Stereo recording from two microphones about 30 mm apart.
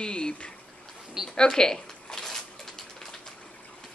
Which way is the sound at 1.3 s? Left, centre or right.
Left.